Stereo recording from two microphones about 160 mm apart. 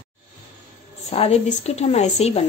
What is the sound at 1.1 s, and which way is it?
A woman's voice, 40° left (ahead or behind).